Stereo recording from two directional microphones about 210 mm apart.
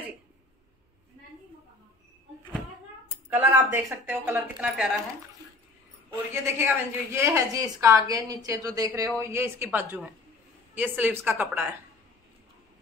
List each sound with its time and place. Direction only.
3.3 s a woman's voice: 10° right (ahead or behind)
6.3 s a woman's voice: 10° right (ahead or behind)